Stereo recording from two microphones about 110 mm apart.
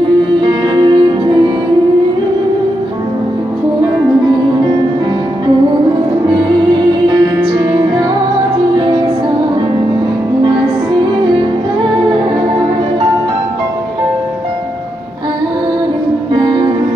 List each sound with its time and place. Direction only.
0.4 s music: 45° right (ahead or behind)